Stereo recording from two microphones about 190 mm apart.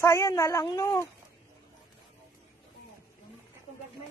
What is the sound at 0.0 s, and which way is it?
Speech, 15° left (ahead or behind).